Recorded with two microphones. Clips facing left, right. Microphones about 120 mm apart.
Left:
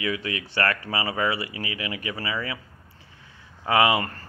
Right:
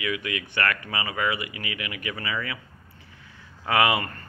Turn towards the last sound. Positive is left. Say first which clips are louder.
# left 2 dB
turn(degrees=25)  # may be behind; listen again after turning